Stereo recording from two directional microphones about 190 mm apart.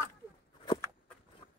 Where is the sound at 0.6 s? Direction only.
25° left (ahead or behind).